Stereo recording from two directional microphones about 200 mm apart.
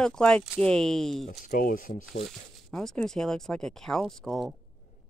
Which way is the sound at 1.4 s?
45° left (ahead or behind).